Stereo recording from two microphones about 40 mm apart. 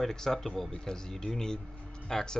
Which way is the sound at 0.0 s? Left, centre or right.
Centre.